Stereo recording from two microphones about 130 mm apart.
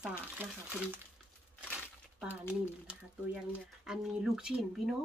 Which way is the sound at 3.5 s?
5° right (ahead or behind).